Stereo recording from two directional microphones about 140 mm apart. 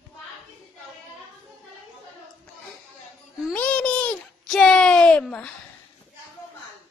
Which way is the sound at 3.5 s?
10° left (ahead or behind).